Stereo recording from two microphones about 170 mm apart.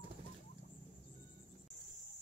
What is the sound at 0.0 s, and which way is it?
Rodents, 35° right (ahead or behind).